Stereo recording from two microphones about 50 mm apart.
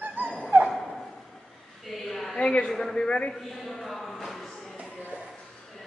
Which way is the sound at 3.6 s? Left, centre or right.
Centre.